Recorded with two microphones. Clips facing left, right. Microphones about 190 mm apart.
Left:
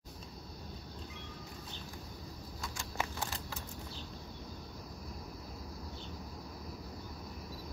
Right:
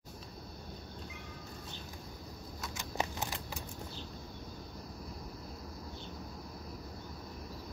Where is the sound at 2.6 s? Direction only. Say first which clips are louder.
Right 2 dB; 20° right (ahead or behind).